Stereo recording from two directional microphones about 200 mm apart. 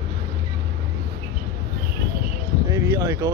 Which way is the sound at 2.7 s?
15° right (ahead or behind).